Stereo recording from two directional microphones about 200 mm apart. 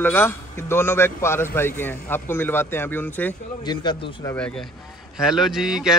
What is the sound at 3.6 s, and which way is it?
Speech, 20° left (ahead or behind).